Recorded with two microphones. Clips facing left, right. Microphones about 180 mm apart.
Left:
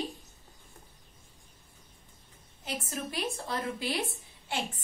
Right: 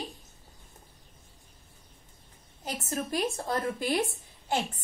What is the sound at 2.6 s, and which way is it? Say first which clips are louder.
A woman's voice: right 3 dB; 45° right (ahead or behind).